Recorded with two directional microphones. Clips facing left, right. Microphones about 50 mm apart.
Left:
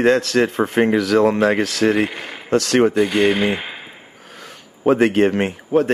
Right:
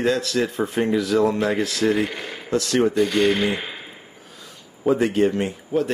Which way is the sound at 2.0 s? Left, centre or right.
Left.